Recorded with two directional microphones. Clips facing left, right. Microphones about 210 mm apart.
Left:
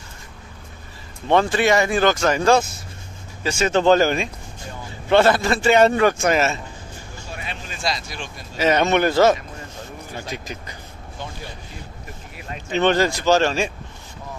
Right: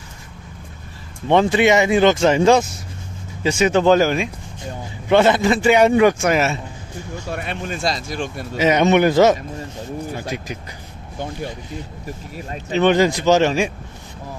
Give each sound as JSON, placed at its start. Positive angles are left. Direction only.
{"t": 1.3, "sound": "a man's voice", "side_deg": -15}
{"t": 5.1, "sound": "a man's voice", "side_deg": -15}
{"t": 7.2, "sound": "speech", "side_deg": -55}
{"t": 8.5, "sound": "a man's voice", "side_deg": -15}
{"t": 12.4, "sound": "speech", "side_deg": -35}
{"t": 12.7, "sound": "a man's voice", "side_deg": -15}